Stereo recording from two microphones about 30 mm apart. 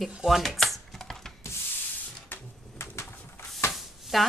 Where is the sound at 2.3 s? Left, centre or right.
Left.